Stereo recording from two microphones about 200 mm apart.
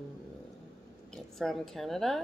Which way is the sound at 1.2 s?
Centre (ahead or behind).